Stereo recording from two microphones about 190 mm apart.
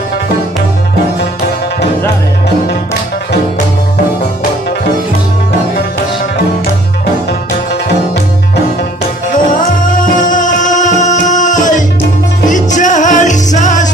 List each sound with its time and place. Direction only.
9.3 s music: 45° left (ahead or behind)